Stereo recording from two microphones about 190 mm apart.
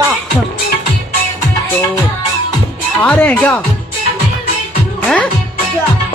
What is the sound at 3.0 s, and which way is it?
Speech, 10° left (ahead or behind).